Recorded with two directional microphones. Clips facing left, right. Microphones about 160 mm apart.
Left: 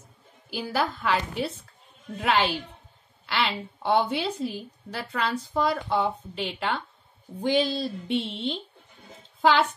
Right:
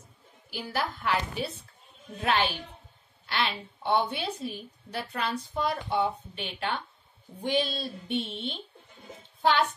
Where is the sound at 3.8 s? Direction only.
90° left.